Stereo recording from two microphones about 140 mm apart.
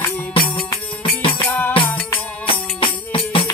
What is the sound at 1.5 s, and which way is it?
Music, 10° left (ahead or behind).